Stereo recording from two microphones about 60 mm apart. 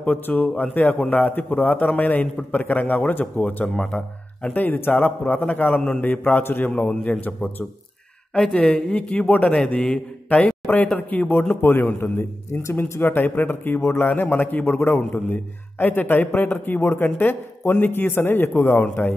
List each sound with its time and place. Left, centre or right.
0.0 s a man's voice: left
3.7 s speech: centre
4.6 s a man's voice: left
8.4 s a man's voice: centre; by 13.0 s left
13.0 s a man's voice: left